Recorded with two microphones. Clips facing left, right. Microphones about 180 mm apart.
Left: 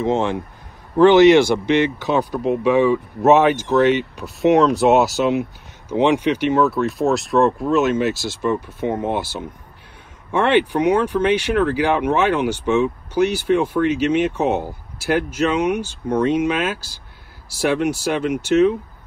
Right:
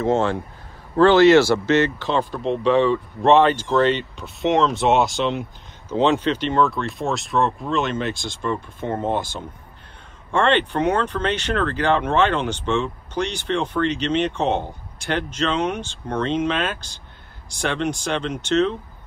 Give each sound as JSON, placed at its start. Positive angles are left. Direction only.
{"t": 0.0, "sound": "speech", "side_deg": 15}